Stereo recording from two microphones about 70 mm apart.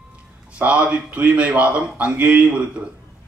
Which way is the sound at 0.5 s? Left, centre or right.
Centre.